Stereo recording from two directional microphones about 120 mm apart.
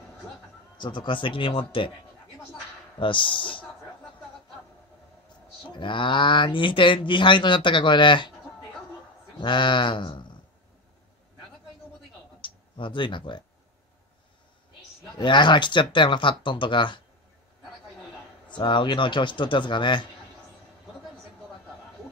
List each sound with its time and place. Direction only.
0.7 s speech: 40° left (ahead or behind)
3.0 s speech: 45° left (ahead or behind)
5.7 s speech: 45° left (ahead or behind)
9.4 s speech: 40° left (ahead or behind)
12.4 s a sound: 45° left (ahead or behind)
15.1 s speech: 40° left (ahead or behind)
18.5 s speech: 40° left (ahead or behind)